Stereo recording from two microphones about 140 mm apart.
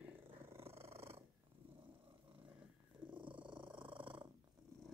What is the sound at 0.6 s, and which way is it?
Purr, 45° right (ahead or behind).